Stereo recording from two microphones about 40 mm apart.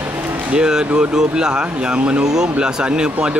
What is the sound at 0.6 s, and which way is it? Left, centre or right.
Speech, centre.